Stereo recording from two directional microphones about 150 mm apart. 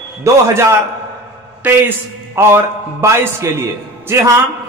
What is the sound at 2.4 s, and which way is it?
A man's voice, 15° right (ahead or behind).